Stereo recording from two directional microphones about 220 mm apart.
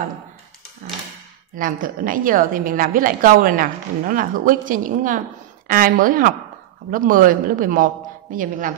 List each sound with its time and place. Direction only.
1.6 s a woman's voice: 40° right (ahead or behind)